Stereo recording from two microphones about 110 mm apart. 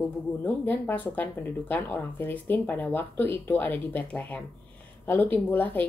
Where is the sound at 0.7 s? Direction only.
15° left (ahead or behind).